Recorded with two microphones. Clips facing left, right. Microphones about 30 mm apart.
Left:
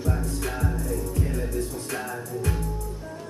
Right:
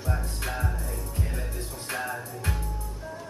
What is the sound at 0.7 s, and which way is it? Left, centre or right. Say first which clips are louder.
Music: left 7 dB; right.